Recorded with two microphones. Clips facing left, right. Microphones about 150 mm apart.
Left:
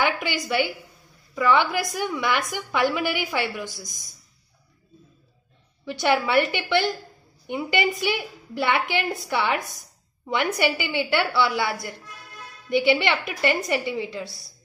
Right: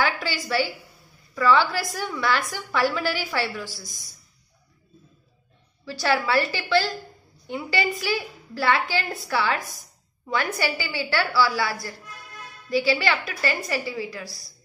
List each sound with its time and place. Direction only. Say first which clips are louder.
0.0 s a woman's voice: left 1 dB; 20° left (ahead or behind)
5.9 s a woman's voice: left 1 dB; 20° left (ahead or behind)